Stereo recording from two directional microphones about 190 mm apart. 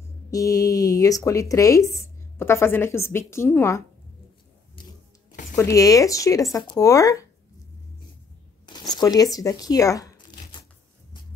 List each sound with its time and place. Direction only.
0.3 s speech: 20° left (ahead or behind)
5.6 s speech: 15° left (ahead or behind)
8.6 s tearing: 20° left (ahead or behind)